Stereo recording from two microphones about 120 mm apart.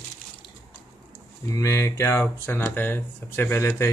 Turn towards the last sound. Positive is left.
turn(degrees=25)  # may be behind; listen again after turning